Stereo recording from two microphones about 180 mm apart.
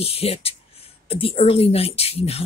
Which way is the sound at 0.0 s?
35° left (ahead or behind).